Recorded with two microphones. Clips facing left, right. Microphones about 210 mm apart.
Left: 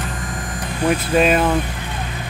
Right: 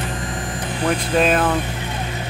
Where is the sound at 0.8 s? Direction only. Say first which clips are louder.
Left 2 dB; 5° left (ahead or behind).